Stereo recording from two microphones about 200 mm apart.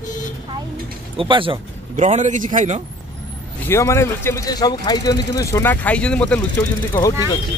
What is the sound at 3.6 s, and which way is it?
Speech, 15° left (ahead or behind).